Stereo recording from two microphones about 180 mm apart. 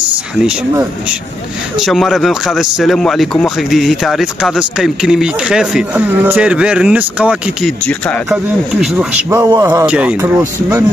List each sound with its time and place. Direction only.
1.8 s speech: centre (ahead or behind)
7.8 s speech: 5° left (ahead or behind)
9.3 s a man's voice: 15° right (ahead or behind)